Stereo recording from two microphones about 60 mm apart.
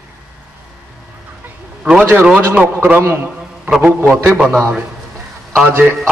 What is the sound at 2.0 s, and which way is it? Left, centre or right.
A man's voice, right.